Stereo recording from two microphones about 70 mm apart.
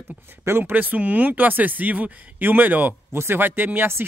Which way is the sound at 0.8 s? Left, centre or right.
Right.